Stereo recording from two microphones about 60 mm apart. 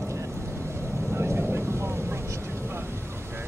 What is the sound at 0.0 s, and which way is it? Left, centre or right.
Vehicle, right.